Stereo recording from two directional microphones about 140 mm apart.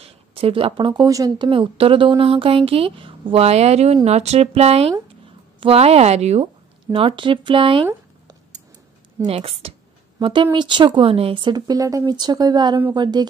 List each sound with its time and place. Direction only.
0.0 s speech: 40° right (ahead or behind); by 1.5 s 25° right (ahead or behind)
1.5 s speech: 40° right (ahead or behind)
6.9 s speech: 40° right (ahead or behind)
9.2 s speech: 45° right (ahead or behind)